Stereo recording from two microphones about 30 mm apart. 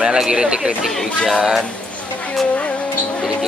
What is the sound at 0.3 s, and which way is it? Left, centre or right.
Speech, right.